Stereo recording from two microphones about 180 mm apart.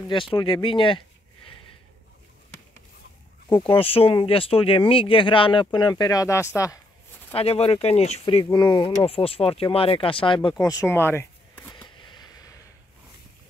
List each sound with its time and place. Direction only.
0.1 s speech: 30° left (ahead or behind)
3.5 s speech: 30° left (ahead or behind)
7.3 s speech: 35° left (ahead or behind)
8.5 s speech: 25° left (ahead or behind)
12.0 s vehicle: 25° left (ahead or behind)